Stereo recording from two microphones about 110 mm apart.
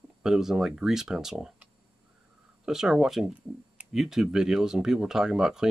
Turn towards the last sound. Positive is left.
turn(degrees=-5)  # may be behind; listen again after turning